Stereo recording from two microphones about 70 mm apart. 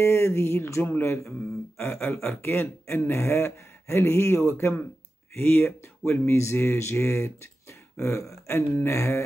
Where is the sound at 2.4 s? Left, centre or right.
Left.